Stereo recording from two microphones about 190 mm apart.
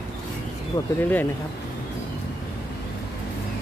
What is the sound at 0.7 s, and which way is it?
Speech, 20° left (ahead or behind).